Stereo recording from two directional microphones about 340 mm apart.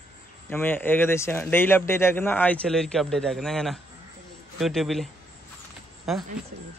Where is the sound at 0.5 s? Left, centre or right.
Centre.